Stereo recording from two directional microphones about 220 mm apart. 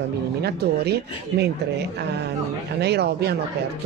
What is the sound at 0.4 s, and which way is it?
Speech, 45° right (ahead or behind).